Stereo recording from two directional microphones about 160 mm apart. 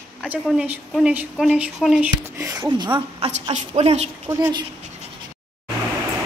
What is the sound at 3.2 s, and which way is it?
Speech, 40° right (ahead or behind).